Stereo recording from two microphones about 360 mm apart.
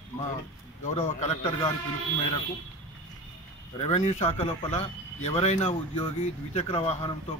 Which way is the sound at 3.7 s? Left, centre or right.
Centre.